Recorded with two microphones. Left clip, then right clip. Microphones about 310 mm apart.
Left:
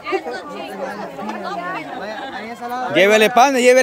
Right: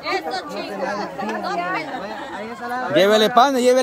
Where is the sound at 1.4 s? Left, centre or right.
Right.